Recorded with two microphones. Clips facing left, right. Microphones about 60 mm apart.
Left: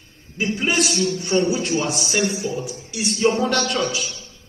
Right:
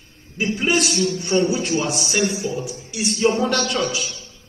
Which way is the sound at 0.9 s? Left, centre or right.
Right.